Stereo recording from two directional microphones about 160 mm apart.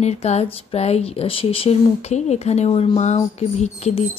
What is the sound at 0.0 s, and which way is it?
Speech, 45° left (ahead or behind).